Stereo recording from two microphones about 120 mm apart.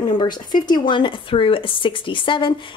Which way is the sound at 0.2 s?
40° left (ahead or behind).